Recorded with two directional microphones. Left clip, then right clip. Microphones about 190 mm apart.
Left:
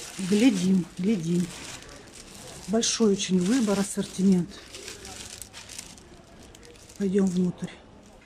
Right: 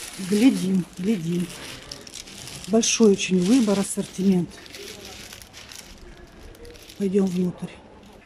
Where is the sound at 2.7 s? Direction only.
10° right (ahead or behind).